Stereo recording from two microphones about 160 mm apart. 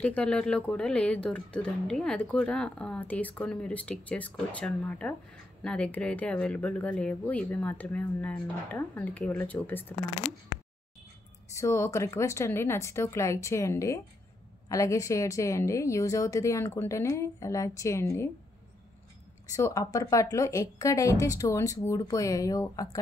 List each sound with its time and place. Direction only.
0.0 s speech: 10° left (ahead or behind)
11.5 s a woman's voice: 20° left (ahead or behind)
19.5 s a woman's voice: 20° left (ahead or behind)